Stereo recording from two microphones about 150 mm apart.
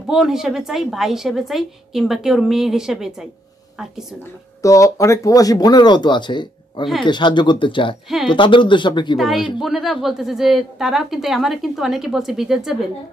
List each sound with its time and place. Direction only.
0.0 s a woman's voice: 5° right (ahead or behind)
4.6 s speech: 20° left (ahead or behind)
9.2 s a woman's voice: centre (ahead or behind)